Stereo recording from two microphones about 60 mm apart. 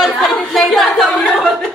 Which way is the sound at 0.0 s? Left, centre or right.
Centre.